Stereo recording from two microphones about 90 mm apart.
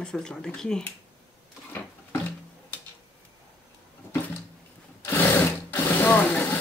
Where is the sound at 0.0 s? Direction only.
10° left (ahead or behind).